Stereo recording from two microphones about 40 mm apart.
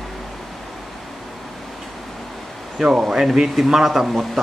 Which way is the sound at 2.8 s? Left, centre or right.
Centre.